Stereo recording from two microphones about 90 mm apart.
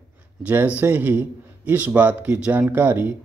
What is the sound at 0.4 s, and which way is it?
A man's voice, 20° right (ahead or behind).